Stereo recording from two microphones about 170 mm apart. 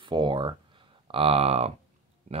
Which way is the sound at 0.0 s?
30° right (ahead or behind).